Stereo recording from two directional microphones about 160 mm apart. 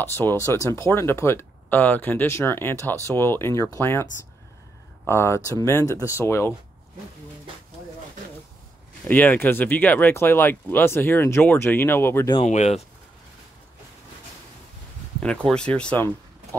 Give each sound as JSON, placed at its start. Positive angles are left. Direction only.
{"t": 0.0, "sound": "speech", "side_deg": 15}
{"t": 9.0, "sound": "speech", "side_deg": 10}
{"t": 12.4, "sound": "speech", "side_deg": 45}
{"t": 15.4, "sound": "speech", "side_deg": 5}